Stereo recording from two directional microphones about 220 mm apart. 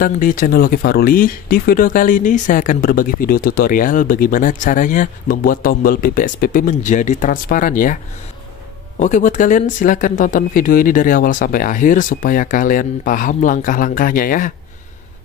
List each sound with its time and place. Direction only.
0.0 s speech: 40° left (ahead or behind)
9.0 s speech: 35° left (ahead or behind)